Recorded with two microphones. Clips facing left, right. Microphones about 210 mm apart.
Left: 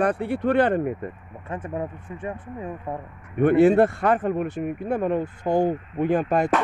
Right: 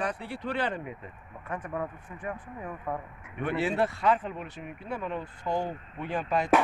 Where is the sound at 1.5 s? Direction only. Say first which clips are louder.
Left 4 dB; 25° left (ahead or behind).